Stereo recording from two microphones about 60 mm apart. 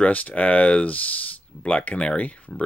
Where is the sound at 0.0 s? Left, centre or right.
Left.